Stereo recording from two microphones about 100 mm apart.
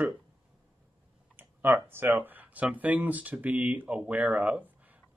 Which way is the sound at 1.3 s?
20° right (ahead or behind).